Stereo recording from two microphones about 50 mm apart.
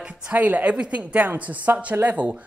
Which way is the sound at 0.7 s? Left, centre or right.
Right.